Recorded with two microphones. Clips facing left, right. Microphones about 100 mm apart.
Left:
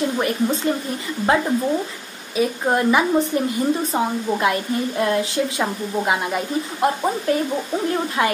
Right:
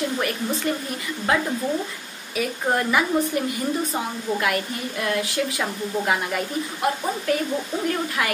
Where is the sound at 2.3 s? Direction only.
20° left (ahead or behind).